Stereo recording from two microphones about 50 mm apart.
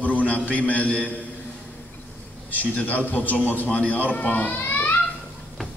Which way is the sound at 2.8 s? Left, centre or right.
Left.